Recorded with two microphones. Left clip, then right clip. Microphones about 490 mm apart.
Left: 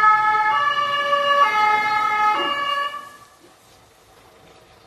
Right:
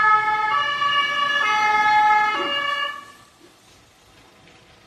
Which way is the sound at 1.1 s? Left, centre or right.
Centre.